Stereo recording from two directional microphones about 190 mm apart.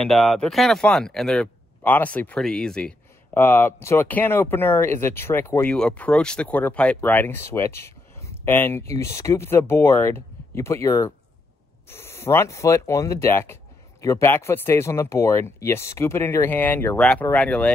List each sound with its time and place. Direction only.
0.0 s speech: centre (ahead or behind)